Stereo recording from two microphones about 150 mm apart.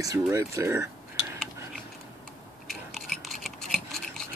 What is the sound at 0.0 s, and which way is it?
Speech, 20° right (ahead or behind).